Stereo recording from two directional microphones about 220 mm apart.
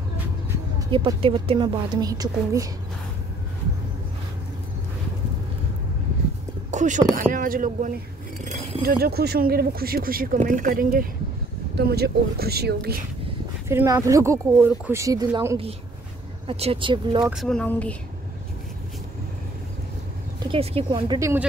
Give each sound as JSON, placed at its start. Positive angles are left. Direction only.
{"t": 0.7, "sound": "a woman's voice", "side_deg": -20}
{"t": 6.7, "sound": "a sound", "side_deg": -35}
{"t": 7.2, "sound": "speech", "side_deg": -40}
{"t": 8.5, "sound": "a sound", "side_deg": -30}
{"t": 8.8, "sound": "speech", "side_deg": -45}
{"t": 13.7, "sound": "a woman's voice", "side_deg": -15}
{"t": 17.3, "sound": "speech", "side_deg": 0}
{"t": 20.4, "sound": "a woman's voice", "side_deg": -25}